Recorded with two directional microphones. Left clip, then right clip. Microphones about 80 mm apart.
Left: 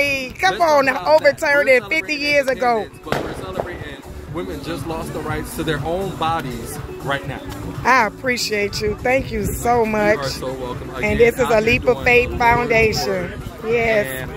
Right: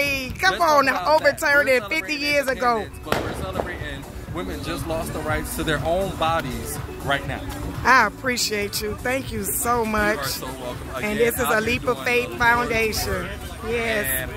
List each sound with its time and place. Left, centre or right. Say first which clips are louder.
0.0 s a sound: left 3 dB; centre
1.0 s speech: left 4 dB; centre
4.4 s speech: left 3 dB; right
7.8 s speech: left 1 dB; centre
13.9 s speech: left 5 dB; right